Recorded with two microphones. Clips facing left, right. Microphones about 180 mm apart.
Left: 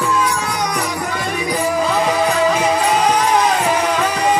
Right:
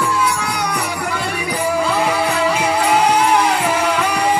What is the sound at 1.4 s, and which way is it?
Music, 15° left (ahead or behind).